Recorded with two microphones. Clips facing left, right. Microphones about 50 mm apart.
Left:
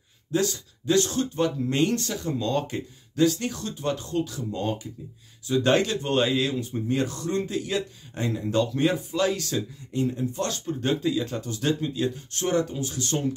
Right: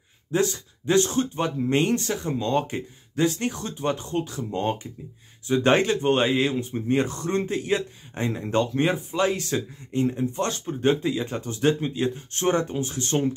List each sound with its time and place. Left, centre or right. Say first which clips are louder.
0.3 s speech: right 2 dB; right